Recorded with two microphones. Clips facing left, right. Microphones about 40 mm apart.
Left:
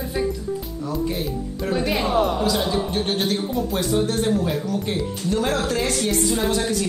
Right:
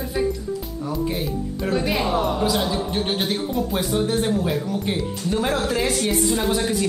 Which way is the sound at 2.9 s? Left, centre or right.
Centre.